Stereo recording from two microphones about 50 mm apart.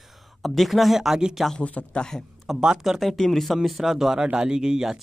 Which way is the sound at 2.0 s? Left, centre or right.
Centre.